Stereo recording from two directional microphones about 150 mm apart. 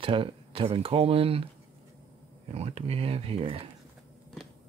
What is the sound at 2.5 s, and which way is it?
Speech, 45° right (ahead or behind).